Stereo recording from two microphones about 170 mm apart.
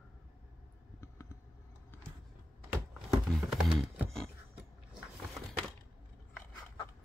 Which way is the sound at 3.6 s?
5° right (ahead or behind).